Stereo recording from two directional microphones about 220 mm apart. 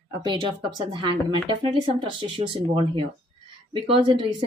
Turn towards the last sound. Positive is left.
turn(degrees=-25)  # may be behind; listen again after turning